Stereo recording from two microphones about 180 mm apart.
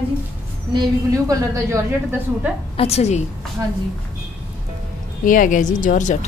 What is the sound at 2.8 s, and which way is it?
Speech, 35° left (ahead or behind).